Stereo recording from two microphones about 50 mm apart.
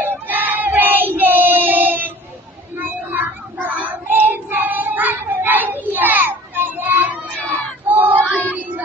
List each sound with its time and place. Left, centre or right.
0.0 s child singing: right